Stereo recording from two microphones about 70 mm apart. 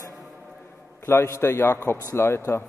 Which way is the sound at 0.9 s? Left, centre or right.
Left.